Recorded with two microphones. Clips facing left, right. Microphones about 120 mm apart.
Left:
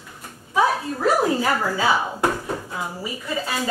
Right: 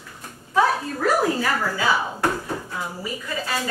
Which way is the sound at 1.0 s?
25° left (ahead or behind).